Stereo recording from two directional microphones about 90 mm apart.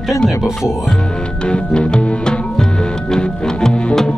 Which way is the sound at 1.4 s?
10° left (ahead or behind).